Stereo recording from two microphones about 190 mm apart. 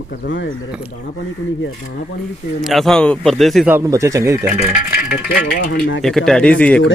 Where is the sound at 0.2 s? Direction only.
70° left (ahead or behind).